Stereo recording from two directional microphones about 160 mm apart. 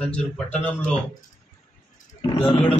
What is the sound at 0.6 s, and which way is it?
Speech, 10° left (ahead or behind).